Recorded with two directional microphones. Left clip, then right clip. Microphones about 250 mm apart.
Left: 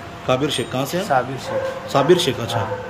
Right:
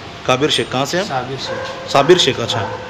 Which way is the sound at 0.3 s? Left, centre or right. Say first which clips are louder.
Right 5 dB; centre.